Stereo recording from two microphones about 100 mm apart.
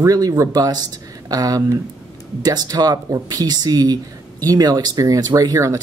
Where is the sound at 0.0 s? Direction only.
35° right (ahead or behind).